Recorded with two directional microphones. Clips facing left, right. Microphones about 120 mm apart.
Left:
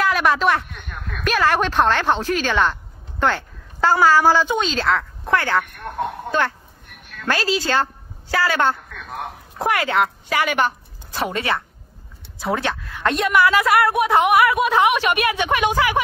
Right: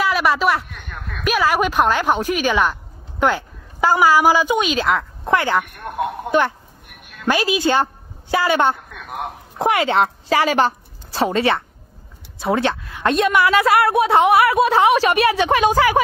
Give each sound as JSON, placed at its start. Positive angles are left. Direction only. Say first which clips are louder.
{"t": 0.0, "sound": "a woman's voice", "louder": "even", "side_deg": 0}